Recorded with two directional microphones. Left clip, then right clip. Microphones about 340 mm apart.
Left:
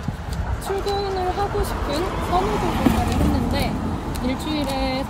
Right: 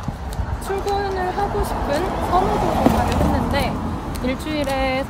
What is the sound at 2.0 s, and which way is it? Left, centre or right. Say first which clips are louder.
Speech: right 3 dB; right.